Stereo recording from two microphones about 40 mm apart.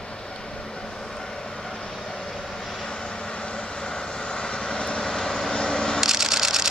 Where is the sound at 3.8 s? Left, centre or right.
Left.